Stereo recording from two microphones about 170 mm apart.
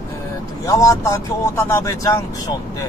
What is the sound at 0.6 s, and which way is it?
Speech, 20° left (ahead or behind).